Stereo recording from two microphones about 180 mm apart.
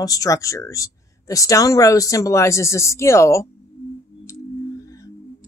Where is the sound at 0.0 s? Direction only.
20° left (ahead or behind).